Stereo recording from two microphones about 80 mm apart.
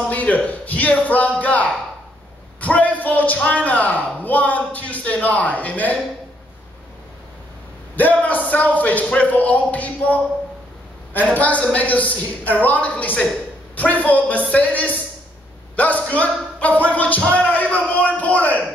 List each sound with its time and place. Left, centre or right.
0.1 s speech: centre
7.9 s speech: centre
11.1 s speech: centre